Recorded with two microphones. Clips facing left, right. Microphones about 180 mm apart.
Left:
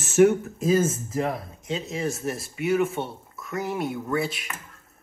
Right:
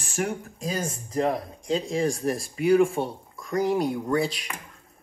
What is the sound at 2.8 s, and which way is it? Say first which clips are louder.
Speech: right 3 dB; centre (ahead or behind).